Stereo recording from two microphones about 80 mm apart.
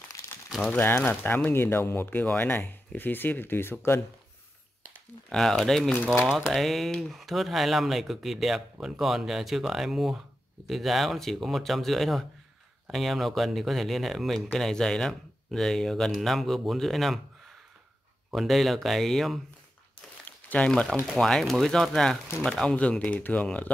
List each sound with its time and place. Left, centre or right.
0.7 s speech: left
5.3 s speech: centre
18.3 s speech: centre
20.4 s speech: centre
21.1 s speech: centre